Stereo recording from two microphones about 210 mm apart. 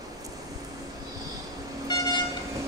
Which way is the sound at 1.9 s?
15° left (ahead or behind).